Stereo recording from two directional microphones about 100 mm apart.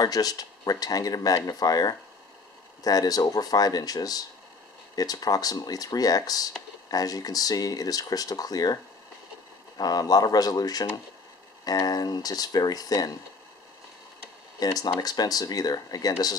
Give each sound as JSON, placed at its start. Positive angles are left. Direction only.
{"t": 0.0, "sound": "speech", "side_deg": 40}
{"t": 9.8, "sound": "speech", "side_deg": 40}
{"t": 14.6, "sound": "speech", "side_deg": 40}